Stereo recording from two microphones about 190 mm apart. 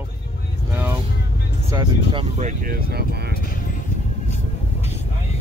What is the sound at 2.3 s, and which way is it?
Speech, 40° right (ahead or behind).